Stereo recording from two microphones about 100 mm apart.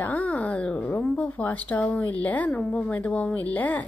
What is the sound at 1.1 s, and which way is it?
A woman's voice, 15° left (ahead or behind).